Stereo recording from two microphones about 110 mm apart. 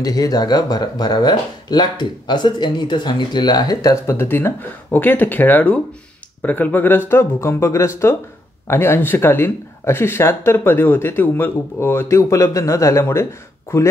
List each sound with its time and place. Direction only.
0.0 s speech: 35° left (ahead or behind)
3.9 s speech: 25° left (ahead or behind)